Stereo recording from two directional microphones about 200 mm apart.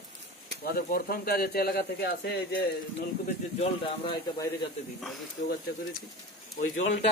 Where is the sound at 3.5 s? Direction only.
25° left (ahead or behind).